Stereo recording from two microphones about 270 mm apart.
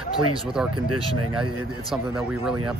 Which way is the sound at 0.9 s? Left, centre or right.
Right.